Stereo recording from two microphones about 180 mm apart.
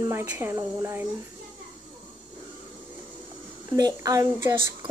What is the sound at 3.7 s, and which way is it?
Speech, 20° right (ahead or behind).